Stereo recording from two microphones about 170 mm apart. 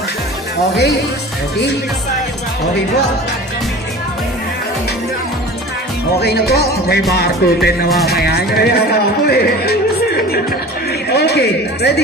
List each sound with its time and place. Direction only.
6.1 s music: 70° left (ahead or behind)
8.1 s a man's voice: 65° left (ahead or behind)